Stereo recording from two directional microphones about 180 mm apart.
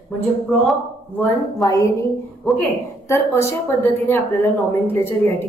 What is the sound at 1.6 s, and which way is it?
Speech, 20° left (ahead or behind).